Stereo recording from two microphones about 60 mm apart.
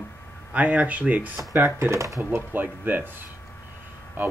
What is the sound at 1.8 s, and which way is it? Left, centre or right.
Speech, right.